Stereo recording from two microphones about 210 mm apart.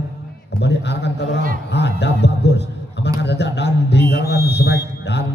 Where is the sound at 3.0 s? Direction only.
55° left (ahead or behind).